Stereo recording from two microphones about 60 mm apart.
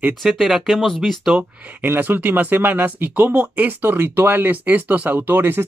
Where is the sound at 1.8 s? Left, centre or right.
Right.